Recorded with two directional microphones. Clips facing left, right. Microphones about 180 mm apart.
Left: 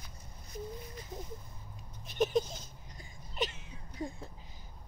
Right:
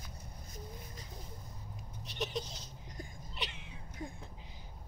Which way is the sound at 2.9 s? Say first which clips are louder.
Right 6 dB; 50° right (ahead or behind).